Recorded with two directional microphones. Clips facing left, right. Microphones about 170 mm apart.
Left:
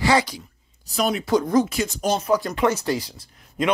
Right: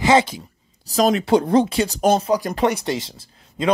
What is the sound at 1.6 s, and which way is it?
Speech, 30° right (ahead or behind).